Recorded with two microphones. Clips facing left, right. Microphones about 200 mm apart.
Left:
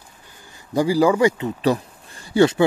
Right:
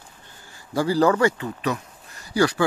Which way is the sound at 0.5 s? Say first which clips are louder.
Left 3 dB; 15° left (ahead or behind).